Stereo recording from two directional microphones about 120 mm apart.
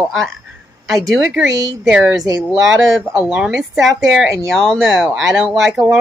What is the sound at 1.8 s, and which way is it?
Speech, 5° right (ahead or behind).